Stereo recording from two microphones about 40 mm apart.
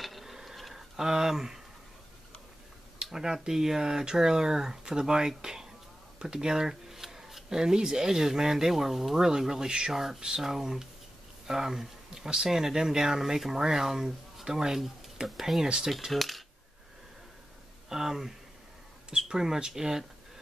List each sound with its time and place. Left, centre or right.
0.0 s a sound: centre
3.1 s speech: centre
6.1 s a sound: centre
7.4 s speech: centre
16.1 s speech: centre
17.8 s speech: centre